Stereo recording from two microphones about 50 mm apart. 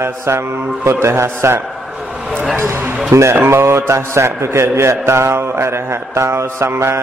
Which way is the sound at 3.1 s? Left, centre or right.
Right.